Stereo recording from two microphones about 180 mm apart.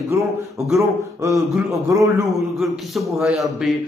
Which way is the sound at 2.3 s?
Centre (ahead or behind).